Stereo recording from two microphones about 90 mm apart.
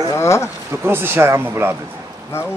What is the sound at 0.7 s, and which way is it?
Speech, 25° right (ahead or behind).